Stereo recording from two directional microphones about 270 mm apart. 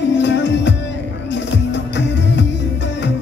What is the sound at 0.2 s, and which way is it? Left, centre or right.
Music, left.